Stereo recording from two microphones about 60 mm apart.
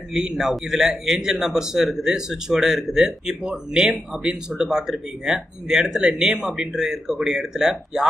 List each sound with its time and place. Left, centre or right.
0.1 s speech: centre